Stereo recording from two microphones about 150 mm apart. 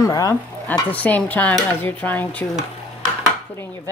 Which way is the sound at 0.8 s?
10° left (ahead or behind).